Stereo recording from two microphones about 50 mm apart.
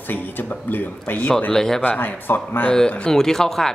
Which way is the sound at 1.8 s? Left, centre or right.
Left.